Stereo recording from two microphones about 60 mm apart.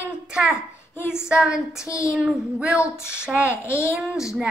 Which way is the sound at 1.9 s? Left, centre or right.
Left.